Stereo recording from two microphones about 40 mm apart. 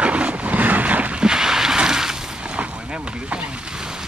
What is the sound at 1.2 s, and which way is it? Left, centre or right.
Boat, centre.